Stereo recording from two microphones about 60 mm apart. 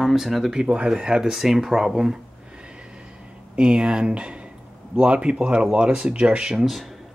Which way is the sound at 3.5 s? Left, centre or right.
Centre.